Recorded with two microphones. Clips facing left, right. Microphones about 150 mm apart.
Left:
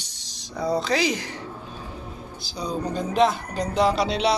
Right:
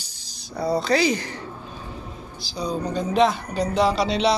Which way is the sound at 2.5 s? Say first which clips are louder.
Right 2 dB; centre (ahead or behind).